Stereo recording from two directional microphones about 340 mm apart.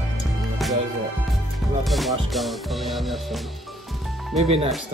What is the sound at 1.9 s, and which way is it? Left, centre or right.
Speech, centre.